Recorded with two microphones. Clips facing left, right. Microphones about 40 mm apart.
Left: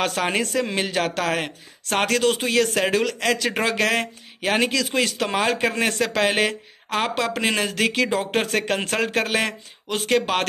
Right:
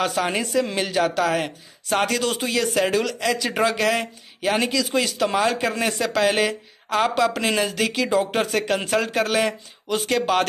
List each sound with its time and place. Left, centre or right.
0.0 s a woman's voice: left
0.4 s speech: left
0.7 s speech: left
0.9 s a woman's voice: left